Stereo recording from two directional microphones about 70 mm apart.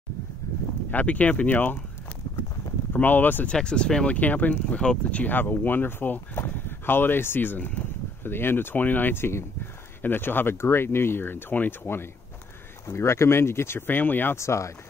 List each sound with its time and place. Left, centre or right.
0.9 s speech: left
2.9 s speech: left
3.5 s speech: centre; by 14.3 s left
14.3 s speech: left